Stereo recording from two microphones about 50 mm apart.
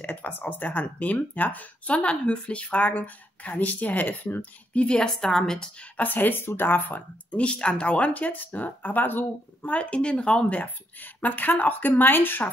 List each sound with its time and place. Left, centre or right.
0.0 s speech: left
4.7 s a woman's voice: left
5.9 s speech: left
7.2 s speech: left
9.8 s speech: left
10.6 s speech: left